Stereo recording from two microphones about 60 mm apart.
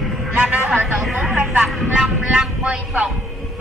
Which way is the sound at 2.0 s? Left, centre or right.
Centre.